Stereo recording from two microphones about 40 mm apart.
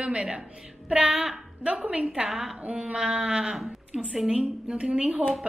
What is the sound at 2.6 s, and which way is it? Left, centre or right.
A woman's voice, right.